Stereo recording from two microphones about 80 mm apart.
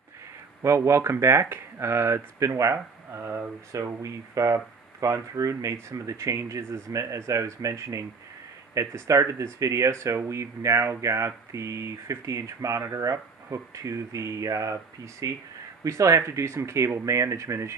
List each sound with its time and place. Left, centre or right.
0.6 s speech: right
3.7 s speech: right